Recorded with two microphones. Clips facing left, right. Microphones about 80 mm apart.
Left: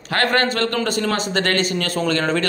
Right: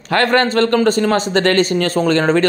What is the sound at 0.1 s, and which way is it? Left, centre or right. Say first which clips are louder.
A woman's voice: right 5 dB; right.